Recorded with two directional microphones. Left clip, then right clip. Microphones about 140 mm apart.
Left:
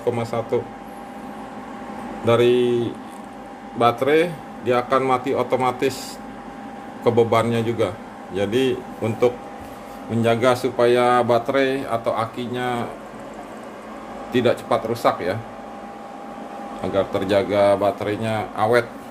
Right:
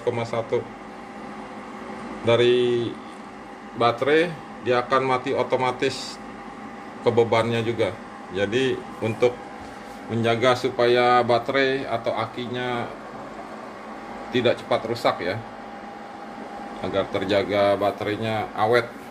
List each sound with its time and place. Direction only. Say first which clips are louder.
0.0 s speech: left 2 dB; 15° left (ahead or behind)
2.2 s speech: left 2 dB; 10° left (ahead or behind)
7.1 s speech: left 2 dB; 10° left (ahead or behind)
14.3 s speech: left 2 dB; 10° left (ahead or behind)
16.8 s speech: left 3 dB; 10° left (ahead or behind)